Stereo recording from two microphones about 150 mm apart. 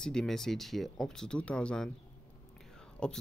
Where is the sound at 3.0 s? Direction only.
5° left (ahead or behind).